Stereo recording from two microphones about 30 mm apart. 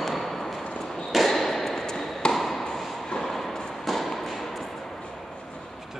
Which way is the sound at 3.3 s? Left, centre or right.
Centre.